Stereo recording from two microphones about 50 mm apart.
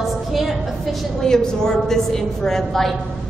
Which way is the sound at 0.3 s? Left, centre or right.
Centre.